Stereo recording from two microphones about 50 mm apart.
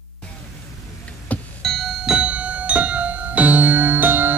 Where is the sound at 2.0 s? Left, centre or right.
Right.